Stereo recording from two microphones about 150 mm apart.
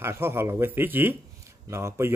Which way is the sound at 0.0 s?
15° right (ahead or behind).